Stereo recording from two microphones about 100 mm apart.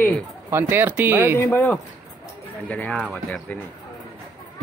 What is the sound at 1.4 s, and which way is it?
Speech, 20° left (ahead or behind).